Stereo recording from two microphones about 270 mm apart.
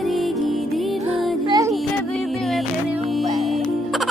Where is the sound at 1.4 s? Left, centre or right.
Centre.